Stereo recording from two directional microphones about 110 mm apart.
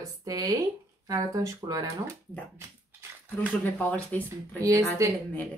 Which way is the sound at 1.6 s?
35° right (ahead or behind).